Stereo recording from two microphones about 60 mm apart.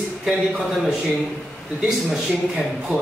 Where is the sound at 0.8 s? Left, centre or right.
Centre.